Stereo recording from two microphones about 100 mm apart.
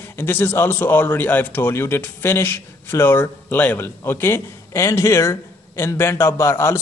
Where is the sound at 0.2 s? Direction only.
20° left (ahead or behind).